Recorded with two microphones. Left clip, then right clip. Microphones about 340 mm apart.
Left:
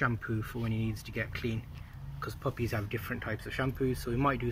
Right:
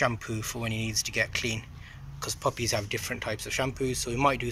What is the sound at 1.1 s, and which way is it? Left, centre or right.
Speech, centre.